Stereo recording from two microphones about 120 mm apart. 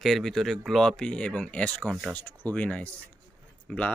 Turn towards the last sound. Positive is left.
turn(degrees=10)  # may be behind; listen again after turning